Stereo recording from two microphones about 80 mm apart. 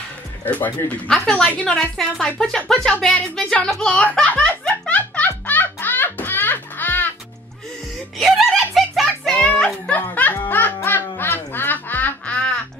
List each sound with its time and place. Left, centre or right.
1.0 s speech: centre
4.5 s music: centre
8.2 s music: centre
9.9 s music: left
10.5 s quack: left